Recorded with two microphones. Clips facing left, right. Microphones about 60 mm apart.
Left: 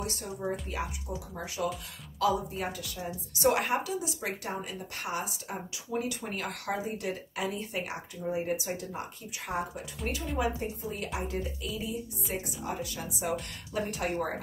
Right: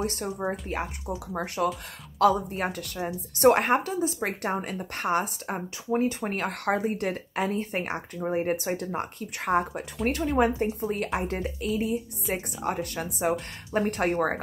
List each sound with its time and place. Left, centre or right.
0.0 s a woman's voice: right